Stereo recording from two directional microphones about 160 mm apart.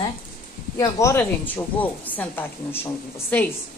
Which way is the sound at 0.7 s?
15° left (ahead or behind).